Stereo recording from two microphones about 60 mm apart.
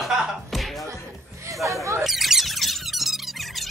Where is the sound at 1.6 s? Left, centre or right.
Right.